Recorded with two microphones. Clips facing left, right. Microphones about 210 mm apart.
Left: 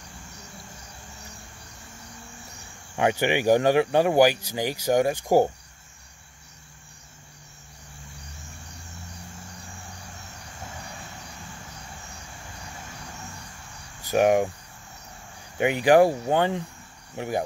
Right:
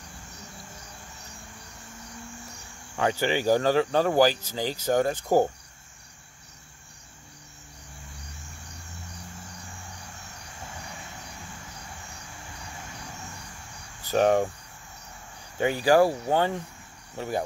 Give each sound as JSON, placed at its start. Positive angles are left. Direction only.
{"t": 3.0, "sound": "speech", "side_deg": 15}
{"t": 14.0, "sound": "speech", "side_deg": 15}
{"t": 15.5, "sound": "speech", "side_deg": 20}